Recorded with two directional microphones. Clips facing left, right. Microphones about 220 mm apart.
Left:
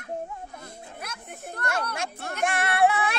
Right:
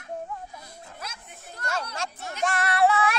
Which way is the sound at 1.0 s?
60° left (ahead or behind).